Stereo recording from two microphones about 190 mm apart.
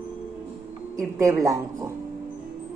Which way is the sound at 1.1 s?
20° right (ahead or behind).